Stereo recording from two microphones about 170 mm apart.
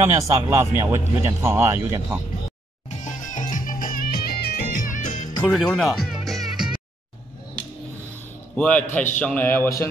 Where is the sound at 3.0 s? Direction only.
50° left (ahead or behind).